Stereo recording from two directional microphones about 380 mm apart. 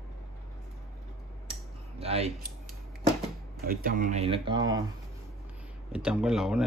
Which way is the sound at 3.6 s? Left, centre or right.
Right.